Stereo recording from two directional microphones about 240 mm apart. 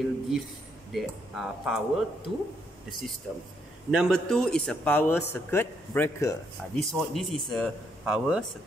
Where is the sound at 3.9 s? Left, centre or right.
Centre.